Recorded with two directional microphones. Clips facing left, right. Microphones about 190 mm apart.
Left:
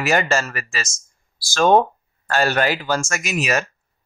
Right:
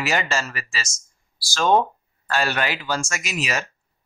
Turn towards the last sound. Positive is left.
turn(degrees=50)  # may be behind; listen again after turning